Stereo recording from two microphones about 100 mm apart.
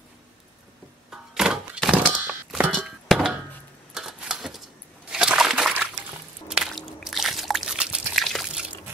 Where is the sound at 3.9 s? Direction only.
5° right (ahead or behind).